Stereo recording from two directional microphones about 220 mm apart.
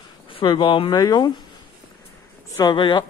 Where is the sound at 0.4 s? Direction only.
25° left (ahead or behind).